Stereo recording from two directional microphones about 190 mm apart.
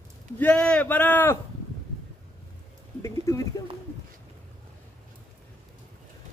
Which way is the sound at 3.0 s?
15° left (ahead or behind).